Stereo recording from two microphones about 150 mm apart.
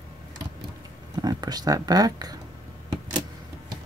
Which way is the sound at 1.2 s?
25° right (ahead or behind).